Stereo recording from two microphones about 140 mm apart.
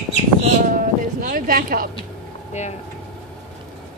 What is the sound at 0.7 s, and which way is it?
Speech, 85° right.